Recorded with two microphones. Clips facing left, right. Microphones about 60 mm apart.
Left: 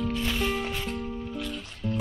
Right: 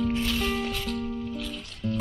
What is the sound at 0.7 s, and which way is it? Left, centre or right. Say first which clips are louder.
Music: right 1 dB; centre.